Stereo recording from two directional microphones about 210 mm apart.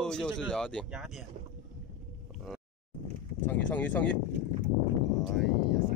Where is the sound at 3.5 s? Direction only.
5° left (ahead or behind).